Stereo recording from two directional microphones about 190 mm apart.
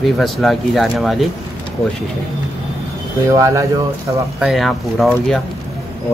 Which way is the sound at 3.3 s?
15° right (ahead or behind).